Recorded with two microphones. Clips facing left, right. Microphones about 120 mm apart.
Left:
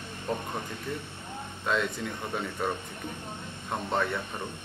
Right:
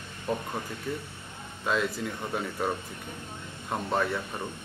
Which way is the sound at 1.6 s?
5° right (ahead or behind).